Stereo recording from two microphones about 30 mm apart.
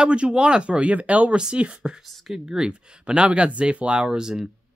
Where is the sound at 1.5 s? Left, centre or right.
Right.